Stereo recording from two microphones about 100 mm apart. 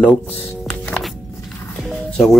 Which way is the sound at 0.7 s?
10° left (ahead or behind).